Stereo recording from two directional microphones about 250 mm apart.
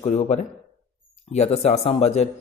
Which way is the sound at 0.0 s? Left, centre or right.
Left.